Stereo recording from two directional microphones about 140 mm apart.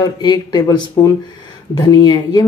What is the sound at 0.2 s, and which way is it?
Speech, 30° left (ahead or behind).